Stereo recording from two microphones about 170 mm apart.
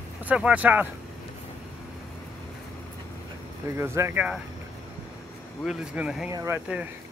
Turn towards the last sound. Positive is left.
turn(degrees=-10)  # may be behind; listen again after turning